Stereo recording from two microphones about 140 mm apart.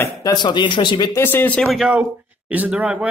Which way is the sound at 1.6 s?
5° right (ahead or behind).